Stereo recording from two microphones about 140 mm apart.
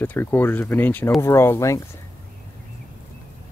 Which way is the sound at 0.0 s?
15° left (ahead or behind).